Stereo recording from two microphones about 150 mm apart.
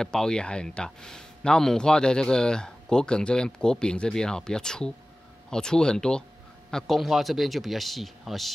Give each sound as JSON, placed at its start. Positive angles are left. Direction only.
{"t": 0.0, "sound": "speech", "side_deg": 5}